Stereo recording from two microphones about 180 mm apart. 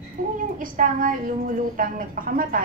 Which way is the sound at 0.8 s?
50° right (ahead or behind).